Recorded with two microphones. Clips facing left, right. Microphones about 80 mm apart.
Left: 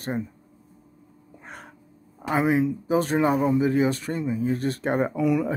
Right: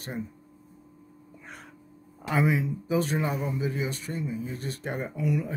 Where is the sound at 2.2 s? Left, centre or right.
Left.